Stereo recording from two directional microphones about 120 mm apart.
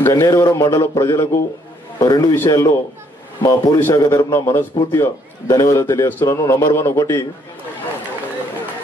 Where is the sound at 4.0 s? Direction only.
30° left (ahead or behind).